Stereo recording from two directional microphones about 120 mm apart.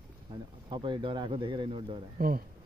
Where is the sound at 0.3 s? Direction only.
40° right (ahead or behind).